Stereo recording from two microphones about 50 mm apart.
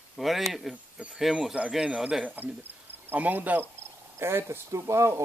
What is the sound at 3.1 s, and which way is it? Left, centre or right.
Speech, right.